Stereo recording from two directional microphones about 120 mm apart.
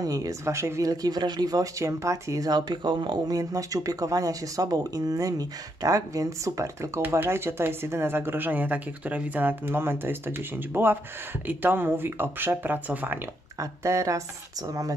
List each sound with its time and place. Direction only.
0.0 s speech: 30° right (ahead or behind); by 13.2 s 15° right (ahead or behind)
13.6 s speech: 25° right (ahead or behind)